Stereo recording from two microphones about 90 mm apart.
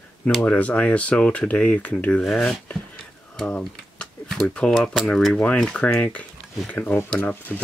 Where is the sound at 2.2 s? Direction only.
5° left (ahead or behind).